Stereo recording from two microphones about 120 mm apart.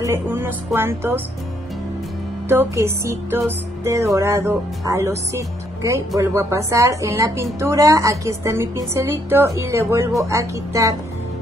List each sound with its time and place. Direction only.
0.0 s a woman's voice: 20° right (ahead or behind)
2.4 s a woman's voice: 20° right (ahead or behind)